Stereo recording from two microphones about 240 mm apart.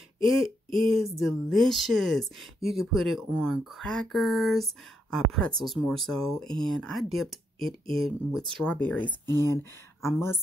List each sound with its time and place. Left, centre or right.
0.7 s speech: centre
9.2 s speech: centre
9.5 s speech: centre